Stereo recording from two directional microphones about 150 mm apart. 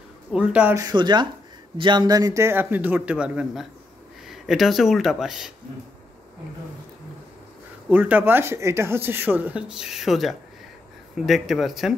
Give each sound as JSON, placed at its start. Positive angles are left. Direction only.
{"t": 0.3, "sound": "speech", "side_deg": -10}
{"t": 0.7, "sound": "speech", "side_deg": -25}
{"t": 7.9, "sound": "speech", "side_deg": -10}